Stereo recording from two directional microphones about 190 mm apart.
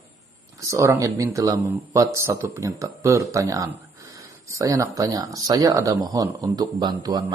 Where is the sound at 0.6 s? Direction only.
15° right (ahead or behind).